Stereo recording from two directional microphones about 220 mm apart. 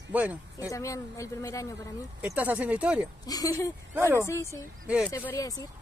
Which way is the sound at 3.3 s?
15° left (ahead or behind).